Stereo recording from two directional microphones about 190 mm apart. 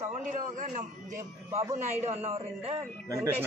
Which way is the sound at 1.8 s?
35° right (ahead or behind).